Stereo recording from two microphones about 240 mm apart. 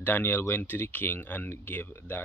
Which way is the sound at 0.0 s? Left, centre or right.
Centre.